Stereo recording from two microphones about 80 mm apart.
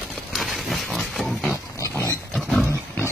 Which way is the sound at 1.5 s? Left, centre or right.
Left.